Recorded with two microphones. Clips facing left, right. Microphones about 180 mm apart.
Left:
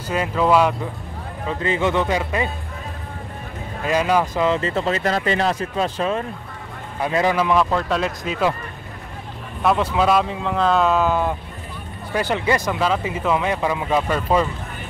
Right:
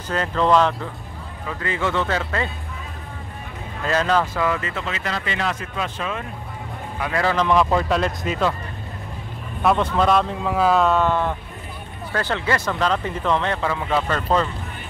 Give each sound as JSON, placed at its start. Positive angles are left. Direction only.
{"t": 0.1, "sound": "speech", "side_deg": 10}
{"t": 1.5, "sound": "speech", "side_deg": 20}
{"t": 3.8, "sound": "speech", "side_deg": 10}
{"t": 7.0, "sound": "a man's voice", "side_deg": 20}
{"t": 7.3, "sound": "speech", "side_deg": 5}
{"t": 9.6, "sound": "speech", "side_deg": 0}